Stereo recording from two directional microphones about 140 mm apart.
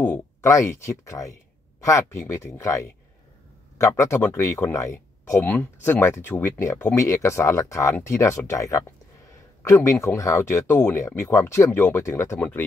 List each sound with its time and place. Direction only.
0.0 s speech: 15° left (ahead or behind)